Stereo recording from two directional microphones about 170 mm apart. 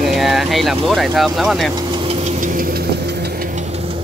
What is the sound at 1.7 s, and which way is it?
Engine knocking, 30° right (ahead or behind).